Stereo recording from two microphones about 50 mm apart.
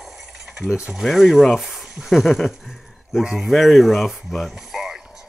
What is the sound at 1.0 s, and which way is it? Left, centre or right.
Speech, centre.